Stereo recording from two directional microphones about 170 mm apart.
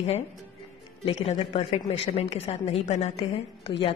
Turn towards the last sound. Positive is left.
turn(degrees=35)  # may be behind; listen again after turning